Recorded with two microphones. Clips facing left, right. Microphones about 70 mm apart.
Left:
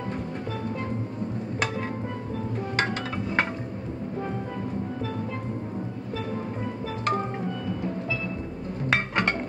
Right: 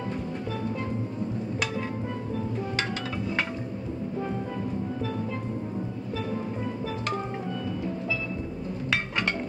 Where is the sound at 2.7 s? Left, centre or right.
Left.